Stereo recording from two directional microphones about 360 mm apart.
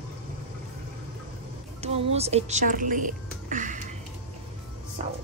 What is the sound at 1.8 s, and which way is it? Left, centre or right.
Speech, centre.